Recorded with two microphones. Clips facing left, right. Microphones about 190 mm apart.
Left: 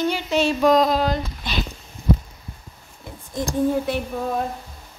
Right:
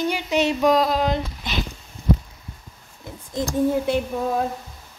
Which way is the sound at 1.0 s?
20° right (ahead or behind).